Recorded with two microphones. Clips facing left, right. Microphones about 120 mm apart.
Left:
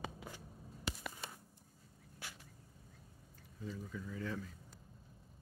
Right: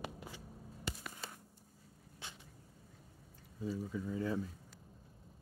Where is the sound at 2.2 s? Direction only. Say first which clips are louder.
Even; 20° right (ahead or behind).